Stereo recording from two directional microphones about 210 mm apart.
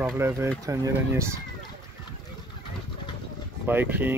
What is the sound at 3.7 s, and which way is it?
Speech, 10° right (ahead or behind).